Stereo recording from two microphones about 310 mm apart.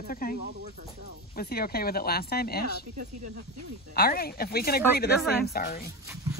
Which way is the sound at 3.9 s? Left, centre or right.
Left.